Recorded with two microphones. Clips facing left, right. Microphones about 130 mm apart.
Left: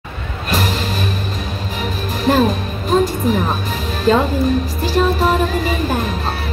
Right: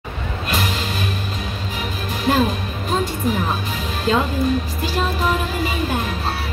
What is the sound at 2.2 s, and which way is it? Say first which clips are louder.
Speech: left 4 dB; 40° left (ahead or behind).